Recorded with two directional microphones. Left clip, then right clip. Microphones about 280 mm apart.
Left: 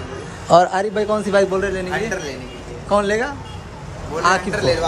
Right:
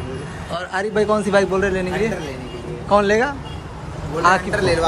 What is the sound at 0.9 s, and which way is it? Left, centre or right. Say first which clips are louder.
A man's voice: right 1 dB; centre.